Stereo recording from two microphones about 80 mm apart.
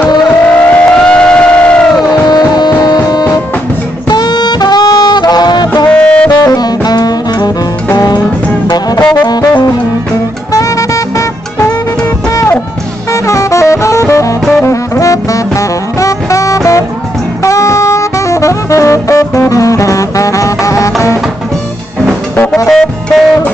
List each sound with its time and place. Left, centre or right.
0.3 s vehicle: centre
2.2 s music: left
4.1 s music: left
5.9 s music: centre
6.3 s saxophone: left
10.5 s music: left
13.1 s music: left
14.6 s saxophone: left
22.7 s music: centre